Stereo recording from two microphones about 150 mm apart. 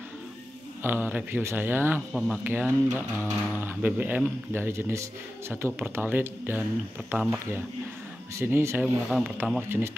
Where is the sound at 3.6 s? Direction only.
10° right (ahead or behind).